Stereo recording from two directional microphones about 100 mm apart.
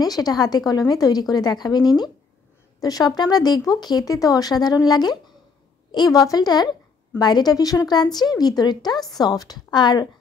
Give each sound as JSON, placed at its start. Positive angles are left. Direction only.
{"t": 0.0, "sound": "a woman's voice", "side_deg": 40}